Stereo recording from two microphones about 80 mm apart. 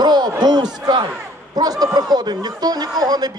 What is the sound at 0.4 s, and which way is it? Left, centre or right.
A man's voice, right.